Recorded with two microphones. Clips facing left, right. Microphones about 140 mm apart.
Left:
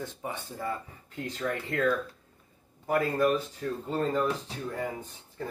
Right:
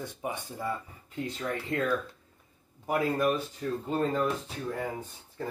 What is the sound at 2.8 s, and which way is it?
Speech, 10° right (ahead or behind).